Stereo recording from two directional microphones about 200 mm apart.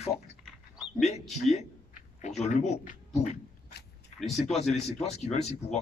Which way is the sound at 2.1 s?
35° left (ahead or behind).